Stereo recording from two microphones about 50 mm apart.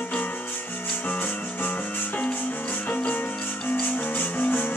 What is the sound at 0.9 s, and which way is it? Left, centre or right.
Music, left.